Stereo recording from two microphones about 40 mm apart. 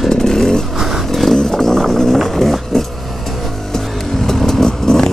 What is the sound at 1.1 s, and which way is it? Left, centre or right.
Vehicle, centre.